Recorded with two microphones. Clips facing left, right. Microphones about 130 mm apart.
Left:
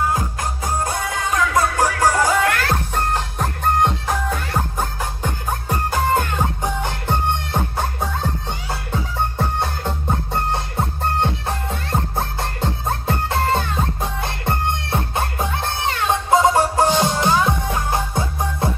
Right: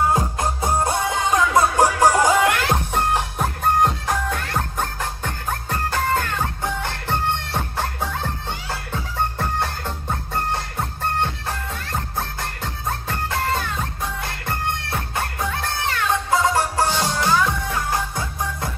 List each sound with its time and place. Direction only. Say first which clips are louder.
0.1 s music: right 2 dB; 25° right (ahead or behind); by 18.7 s 25° left (ahead or behind)